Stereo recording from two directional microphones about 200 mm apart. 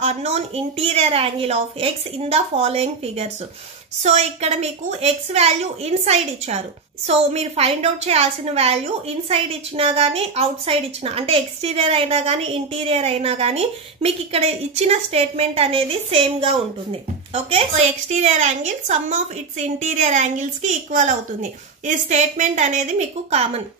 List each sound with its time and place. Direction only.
0.0 s a woman's voice: 30° right (ahead or behind)